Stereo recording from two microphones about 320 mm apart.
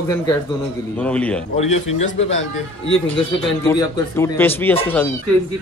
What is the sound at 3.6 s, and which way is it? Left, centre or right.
Speech, centre.